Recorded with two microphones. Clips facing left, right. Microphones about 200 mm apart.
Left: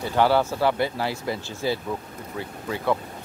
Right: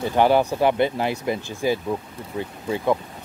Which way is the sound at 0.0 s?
15° right (ahead or behind).